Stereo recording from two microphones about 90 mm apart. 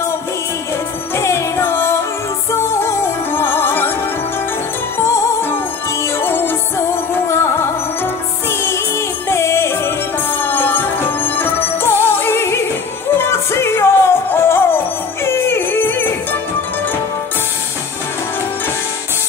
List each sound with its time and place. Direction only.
1.1 s music: 30° left (ahead or behind)
4.9 s music: 35° left (ahead or behind)